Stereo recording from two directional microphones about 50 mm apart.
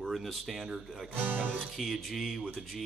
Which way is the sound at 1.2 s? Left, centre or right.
Right.